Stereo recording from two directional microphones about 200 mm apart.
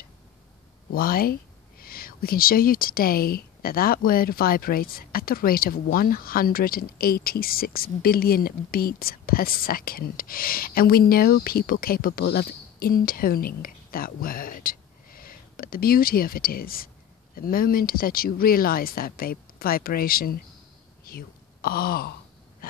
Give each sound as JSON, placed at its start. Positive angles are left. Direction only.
{"t": 0.9, "sound": "speech", "side_deg": 45}
{"t": 21.0, "sound": "sigh", "side_deg": 50}
{"t": 22.6, "sound": "wheeze", "side_deg": 50}